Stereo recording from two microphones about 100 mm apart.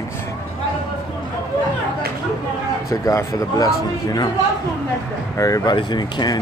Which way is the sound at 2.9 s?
35° left (ahead or behind).